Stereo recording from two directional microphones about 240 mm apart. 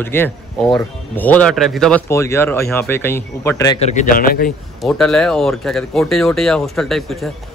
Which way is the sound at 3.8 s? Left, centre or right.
Left.